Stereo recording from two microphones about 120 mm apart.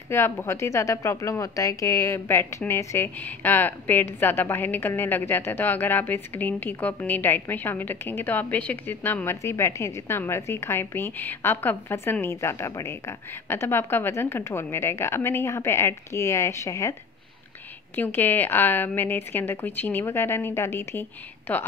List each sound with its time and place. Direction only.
0.1 s a woman's voice: 20° left (ahead or behind)
17.9 s a woman's voice: 15° left (ahead or behind)